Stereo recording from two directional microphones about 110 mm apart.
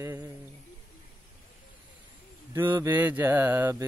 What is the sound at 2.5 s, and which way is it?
Mantra, 20° right (ahead or behind).